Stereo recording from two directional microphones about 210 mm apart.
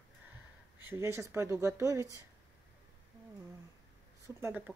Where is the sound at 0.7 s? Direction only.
10° right (ahead or behind).